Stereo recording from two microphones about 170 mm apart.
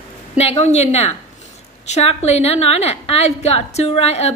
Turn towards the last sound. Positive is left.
turn(degrees=40)  # may be behind; listen again after turning